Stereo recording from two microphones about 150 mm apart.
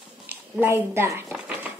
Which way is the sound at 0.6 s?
15° right (ahead or behind).